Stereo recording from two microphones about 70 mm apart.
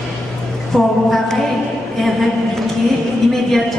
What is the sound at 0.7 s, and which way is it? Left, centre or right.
Speech, centre.